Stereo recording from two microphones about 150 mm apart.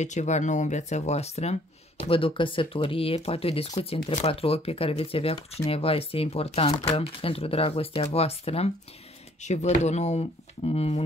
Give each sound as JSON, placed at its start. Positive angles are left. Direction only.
{"t": 0.0, "sound": "speech", "side_deg": 50}